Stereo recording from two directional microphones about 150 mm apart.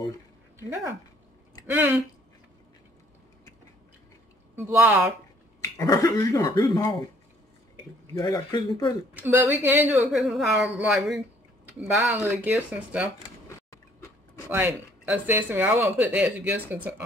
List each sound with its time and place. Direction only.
0.6 s speech: 15° right (ahead or behind)
4.6 s speech: 15° right (ahead or behind)
5.6 s speech: 20° left (ahead or behind)
8.1 s speech: 25° left (ahead or behind)
9.1 s speech: 10° right (ahead or behind)
9.9 s speech: centre (ahead or behind)
14.5 s speech: 15° right (ahead or behind)